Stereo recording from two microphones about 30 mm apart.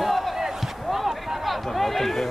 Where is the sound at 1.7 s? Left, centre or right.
Centre.